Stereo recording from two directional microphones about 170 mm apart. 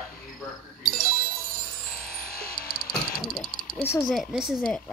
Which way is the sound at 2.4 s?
65° left (ahead or behind).